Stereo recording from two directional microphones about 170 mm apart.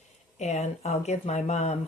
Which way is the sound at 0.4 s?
40° left (ahead or behind).